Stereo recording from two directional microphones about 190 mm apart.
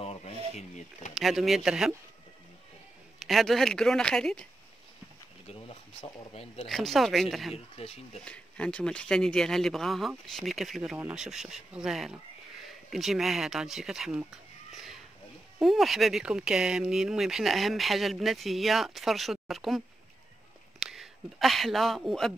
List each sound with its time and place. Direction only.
0.0 s a sound: 30° left (ahead or behind)
0.6 s speech: 40° left (ahead or behind)
1.1 s speech: centre (ahead or behind)
3.2 s speech: centre (ahead or behind)
5.5 s speech: 30° left (ahead or behind)
6.7 s speech: centre (ahead or behind)
7.5 s speech: 30° left (ahead or behind)
8.2 s speech: 5° left (ahead or behind)
20.8 s speech: centre (ahead or behind)